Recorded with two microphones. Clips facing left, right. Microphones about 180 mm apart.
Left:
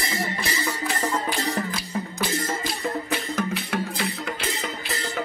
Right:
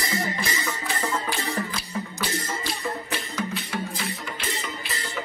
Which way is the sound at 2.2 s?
55° left (ahead or behind).